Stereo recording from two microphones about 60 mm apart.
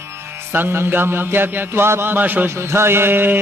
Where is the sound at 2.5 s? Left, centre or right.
Right.